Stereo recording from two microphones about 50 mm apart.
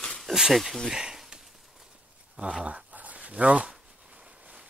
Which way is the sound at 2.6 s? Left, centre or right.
Right.